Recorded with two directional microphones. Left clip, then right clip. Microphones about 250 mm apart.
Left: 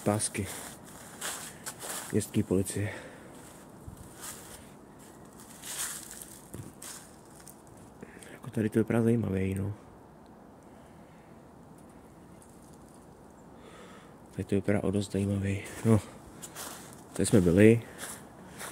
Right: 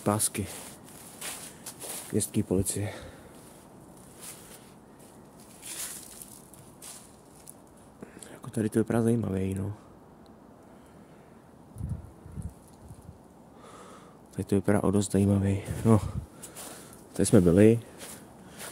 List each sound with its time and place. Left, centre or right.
0.0 s speech: centre
1.2 s walk: centre
2.1 s speech: centre
8.3 s speech: centre
14.3 s speech: right
17.2 s speech: centre
17.6 s a sound: centre